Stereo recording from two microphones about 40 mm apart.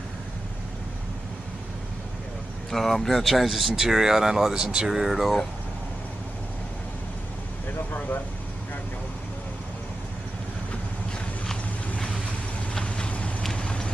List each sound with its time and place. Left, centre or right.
2.7 s speech: centre
12.8 s vehicle: left
13.6 s clip-clop: left